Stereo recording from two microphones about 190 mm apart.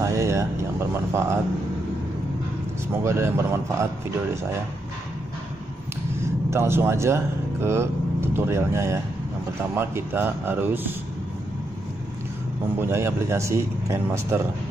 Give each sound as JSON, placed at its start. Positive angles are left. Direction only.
{"t": 0.0, "sound": "vehicle", "side_deg": -15}
{"t": 2.9, "sound": "speech", "side_deg": -15}
{"t": 6.2, "sound": "speech", "side_deg": -15}
{"t": 12.7, "sound": "speech", "side_deg": -15}